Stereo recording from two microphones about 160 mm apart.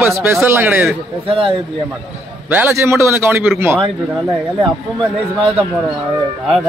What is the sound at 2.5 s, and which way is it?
A man's voice, 15° right (ahead or behind).